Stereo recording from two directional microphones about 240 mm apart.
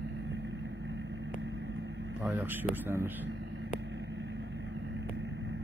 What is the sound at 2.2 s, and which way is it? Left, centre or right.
Speech, centre.